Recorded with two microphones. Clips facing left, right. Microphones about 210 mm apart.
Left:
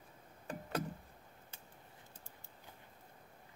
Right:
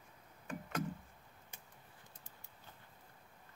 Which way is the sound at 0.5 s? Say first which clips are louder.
Left 1 dB; 35° left (ahead or behind).